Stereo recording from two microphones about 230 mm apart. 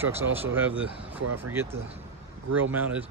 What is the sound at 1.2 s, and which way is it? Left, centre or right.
Speech, right.